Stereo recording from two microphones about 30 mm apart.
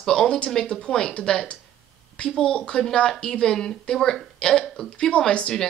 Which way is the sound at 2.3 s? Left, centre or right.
Left.